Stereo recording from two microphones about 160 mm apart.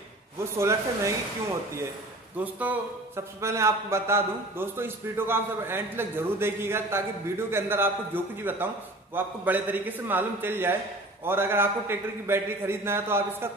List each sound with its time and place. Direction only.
0.4 s a man's voice: 15° right (ahead or behind)
2.3 s a man's voice: 10° right (ahead or behind)